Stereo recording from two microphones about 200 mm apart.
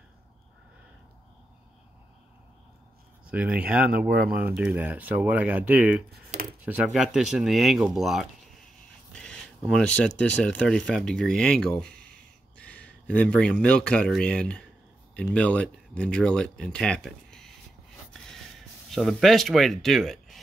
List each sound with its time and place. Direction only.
3.3 s speech: 5° right (ahead or behind)
18.9 s speech: centre (ahead or behind)